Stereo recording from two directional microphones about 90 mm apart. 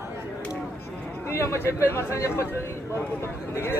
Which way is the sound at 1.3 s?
30° left (ahead or behind).